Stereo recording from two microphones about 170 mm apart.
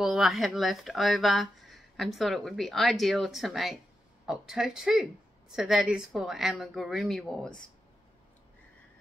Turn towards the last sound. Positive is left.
turn(degrees=0)  # may be behind; listen again after turning